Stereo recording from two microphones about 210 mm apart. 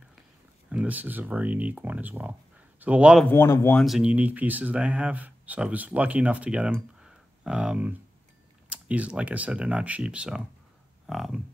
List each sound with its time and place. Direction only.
0.7 s speech: 5° right (ahead or behind)
3.3 s speech: 10° left (ahead or behind)
3.8 s speech: 5° right (ahead or behind)